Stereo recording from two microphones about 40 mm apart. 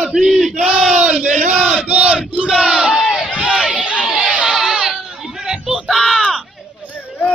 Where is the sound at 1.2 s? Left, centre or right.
Right.